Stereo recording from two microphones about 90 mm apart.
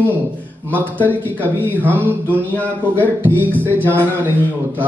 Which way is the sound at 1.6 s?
20° right (ahead or behind).